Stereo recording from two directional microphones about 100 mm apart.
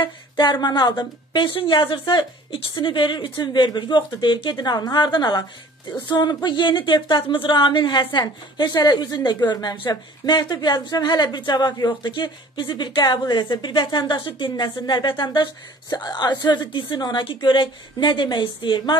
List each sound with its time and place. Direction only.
0.0 s speech: 50° left (ahead or behind)